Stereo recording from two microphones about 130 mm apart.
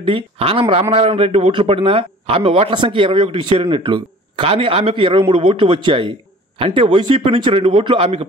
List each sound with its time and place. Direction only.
0.0 s a man's voice: 45° right (ahead or behind)